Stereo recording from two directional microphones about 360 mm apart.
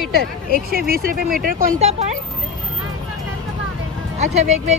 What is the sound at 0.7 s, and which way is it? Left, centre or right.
Speech, right.